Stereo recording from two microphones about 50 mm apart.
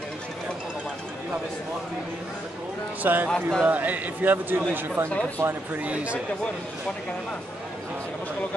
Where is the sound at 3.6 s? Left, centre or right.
Right.